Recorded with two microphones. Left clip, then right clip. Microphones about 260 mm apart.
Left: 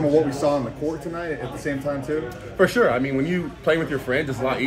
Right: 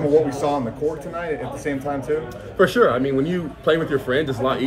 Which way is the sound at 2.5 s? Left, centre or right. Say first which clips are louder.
Right 2 dB; centre.